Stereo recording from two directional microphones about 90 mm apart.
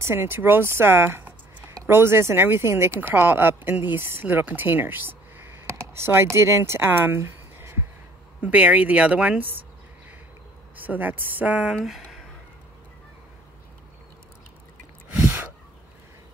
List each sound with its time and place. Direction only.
0.0 s speech: 30° right (ahead or behind)
5.7 s speech: 35° right (ahead or behind)
8.4 s a woman's voice: 15° right (ahead or behind)
10.8 s speech: 20° right (ahead or behind)
11.8 s speech: 5° right (ahead or behind)
15.1 s a sound: 25° right (ahead or behind)